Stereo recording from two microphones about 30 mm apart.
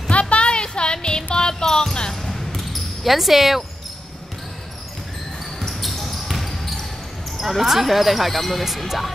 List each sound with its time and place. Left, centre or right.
0.1 s music: left
2.0 s basketball bounce: centre
2.3 s basketball bounce: centre
5.6 s basketball bounce: centre
7.3 s speech: centre